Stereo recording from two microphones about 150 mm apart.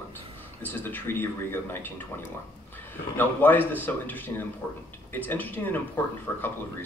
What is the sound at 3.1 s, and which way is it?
A man's voice, 10° left (ahead or behind).